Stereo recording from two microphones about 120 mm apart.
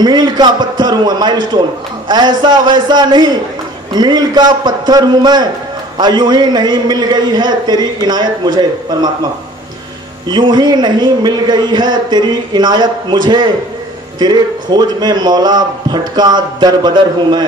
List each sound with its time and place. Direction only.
0.0 s a man's voice: 35° right (ahead or behind)
10.2 s a man's voice: 35° right (ahead or behind)